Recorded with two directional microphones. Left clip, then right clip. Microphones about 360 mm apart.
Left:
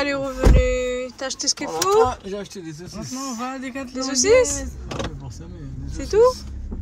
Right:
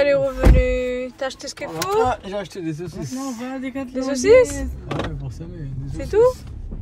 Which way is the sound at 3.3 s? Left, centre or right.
Left.